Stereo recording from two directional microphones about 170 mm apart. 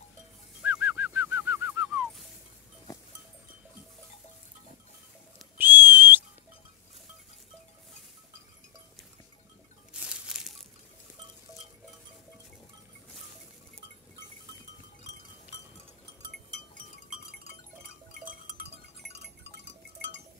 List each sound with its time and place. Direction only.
0.6 s bird: 10° right (ahead or behind)
5.6 s whistle: 10° right (ahead or behind)
10.0 s crumpling: 5° right (ahead or behind)
18.2 s a sound: 55° right (ahead or behind)
19.0 s music: 80° right